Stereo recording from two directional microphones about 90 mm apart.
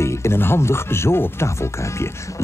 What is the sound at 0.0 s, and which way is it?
Speech, 30° left (ahead or behind).